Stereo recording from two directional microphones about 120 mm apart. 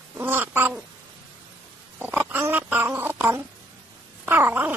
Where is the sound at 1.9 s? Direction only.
15° right (ahead or behind).